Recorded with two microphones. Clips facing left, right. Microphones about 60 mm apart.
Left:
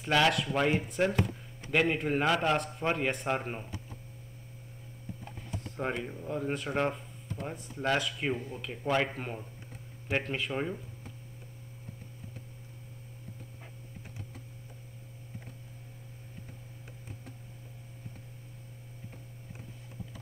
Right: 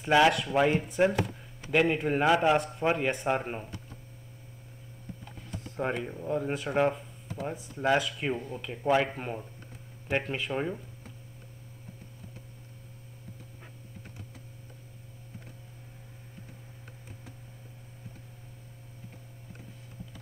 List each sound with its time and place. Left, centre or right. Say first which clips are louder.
0.0 s speech: right 4 dB; centre
5.5 s speech: right 3 dB; centre